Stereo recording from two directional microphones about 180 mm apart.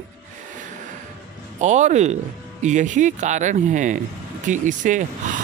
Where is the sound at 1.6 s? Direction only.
40° right (ahead or behind).